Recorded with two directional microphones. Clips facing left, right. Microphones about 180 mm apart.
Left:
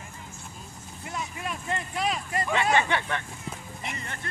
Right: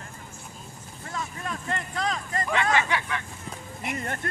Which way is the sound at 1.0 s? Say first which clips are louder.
Even; 15° left (ahead or behind).